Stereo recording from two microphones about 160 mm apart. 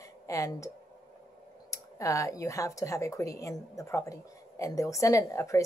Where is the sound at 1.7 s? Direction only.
20° left (ahead or behind).